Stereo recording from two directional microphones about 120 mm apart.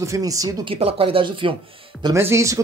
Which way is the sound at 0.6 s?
50° right (ahead or behind).